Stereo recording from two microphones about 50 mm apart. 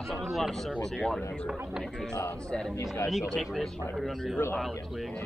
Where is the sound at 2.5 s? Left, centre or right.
Centre.